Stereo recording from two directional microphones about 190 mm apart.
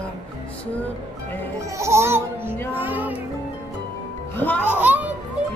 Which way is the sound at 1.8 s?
15° right (ahead or behind).